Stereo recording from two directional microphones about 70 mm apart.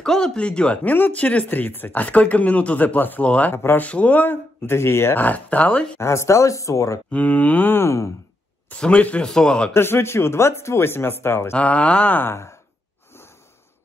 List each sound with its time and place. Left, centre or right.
0.0 s a man's voice: centre
3.5 s speech: left
3.8 s speech: left
5.1 s speech: left
5.9 s speech: left
7.1 s speech: left
7.7 s speech: left
8.7 s a man's voice: centre
9.8 s speech: left
11.5 s a man's voice: centre
12.2 s speech: left